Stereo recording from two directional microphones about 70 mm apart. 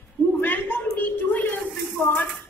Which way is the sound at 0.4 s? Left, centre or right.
Left.